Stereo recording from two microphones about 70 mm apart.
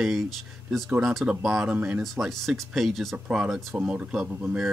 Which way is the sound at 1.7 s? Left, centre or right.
Centre.